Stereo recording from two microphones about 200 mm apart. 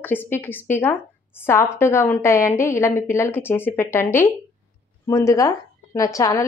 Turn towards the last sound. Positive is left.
turn(degrees=15)  # may be behind; listen again after turning